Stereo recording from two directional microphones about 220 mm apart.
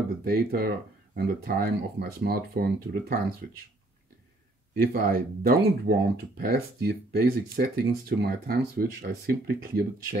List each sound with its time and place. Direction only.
0.2 s speech: 45° right (ahead or behind)
4.7 s speech: 40° right (ahead or behind)